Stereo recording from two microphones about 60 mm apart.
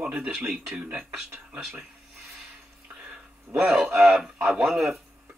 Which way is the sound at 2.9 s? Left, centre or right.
Centre.